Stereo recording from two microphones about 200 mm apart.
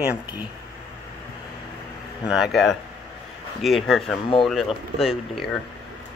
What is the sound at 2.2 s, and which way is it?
Speech, 5° right (ahead or behind).